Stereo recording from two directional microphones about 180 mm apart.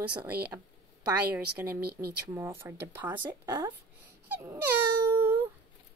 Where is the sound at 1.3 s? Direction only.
10° right (ahead or behind).